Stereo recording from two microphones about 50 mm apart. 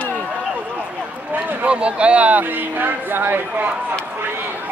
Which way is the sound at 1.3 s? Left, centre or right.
Right.